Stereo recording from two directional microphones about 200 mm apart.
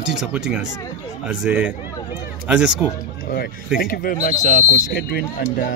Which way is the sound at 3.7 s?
45° left (ahead or behind).